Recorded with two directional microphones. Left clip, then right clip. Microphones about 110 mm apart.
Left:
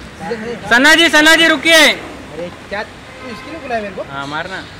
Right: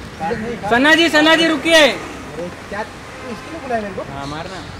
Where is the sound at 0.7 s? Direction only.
40° left (ahead or behind).